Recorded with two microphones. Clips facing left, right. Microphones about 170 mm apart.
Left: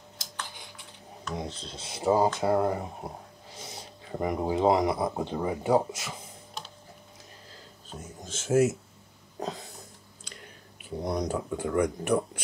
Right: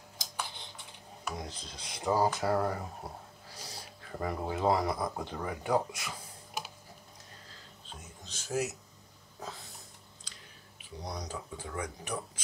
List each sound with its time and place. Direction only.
1.3 s a sound: 10° right (ahead or behind)
1.6 s speech: 25° left (ahead or behind)
6.6 s typing: 10° right (ahead or behind)
8.0 s speech: 45° left (ahead or behind)
9.4 s a sound: 75° left (ahead or behind)
10.3 s speech: 60° left (ahead or behind)